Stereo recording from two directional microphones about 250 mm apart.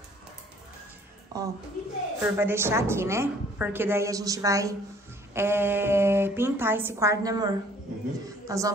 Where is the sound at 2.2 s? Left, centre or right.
Centre.